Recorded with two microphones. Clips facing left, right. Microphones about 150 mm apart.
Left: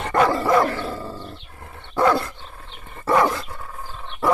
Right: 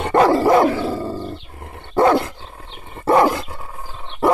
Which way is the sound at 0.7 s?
10° right (ahead or behind).